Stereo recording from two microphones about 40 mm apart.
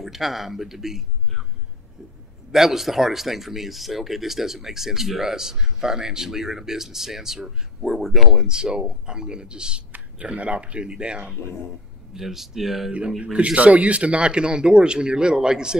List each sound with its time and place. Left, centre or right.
0.0 s speech: centre
2.5 s speech: centre; by 9.8 s right
10.1 s speech: right
12.1 s speech: centre
13.2 s speech: right; by 15.8 s centre